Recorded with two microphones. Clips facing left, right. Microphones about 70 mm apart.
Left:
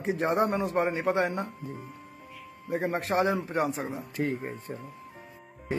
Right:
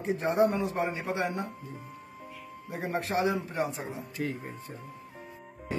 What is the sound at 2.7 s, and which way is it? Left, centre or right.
A man's voice, left.